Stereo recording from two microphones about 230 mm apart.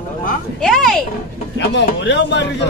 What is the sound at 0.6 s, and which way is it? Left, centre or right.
Speech, centre.